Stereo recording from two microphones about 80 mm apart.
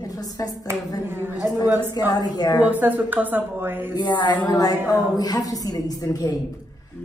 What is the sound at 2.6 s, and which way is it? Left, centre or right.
A woman's voice, right.